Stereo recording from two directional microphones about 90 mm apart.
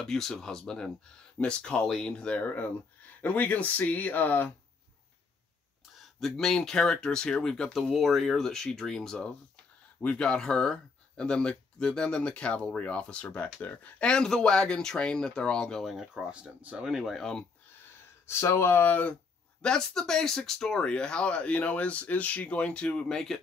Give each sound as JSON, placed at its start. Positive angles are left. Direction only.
{"t": 0.0, "sound": "speech", "side_deg": 5}
{"t": 5.9, "sound": "speech", "side_deg": 0}
{"t": 15.8, "sound": "speech", "side_deg": 0}
{"t": 16.1, "sound": "speech", "side_deg": -10}
{"t": 18.2, "sound": "speech", "side_deg": 30}
{"t": 19.6, "sound": "speech", "side_deg": 10}